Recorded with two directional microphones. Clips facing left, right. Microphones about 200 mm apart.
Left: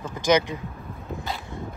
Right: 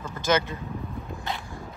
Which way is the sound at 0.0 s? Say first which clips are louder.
Left 4 dB; 15° left (ahead or behind).